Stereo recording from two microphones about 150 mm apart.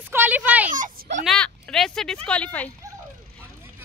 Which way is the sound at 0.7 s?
60° right (ahead or behind).